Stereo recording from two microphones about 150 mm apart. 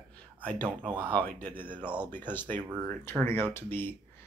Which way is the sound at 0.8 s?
30° right (ahead or behind).